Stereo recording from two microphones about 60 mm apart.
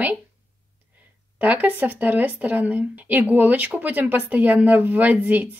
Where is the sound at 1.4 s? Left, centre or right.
Right.